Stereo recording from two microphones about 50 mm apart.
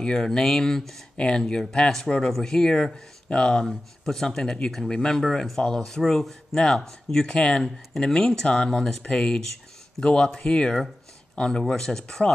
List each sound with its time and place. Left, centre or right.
0.0 s speech: centre